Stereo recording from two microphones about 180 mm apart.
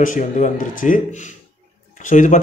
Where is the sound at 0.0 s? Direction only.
45° left (ahead or behind).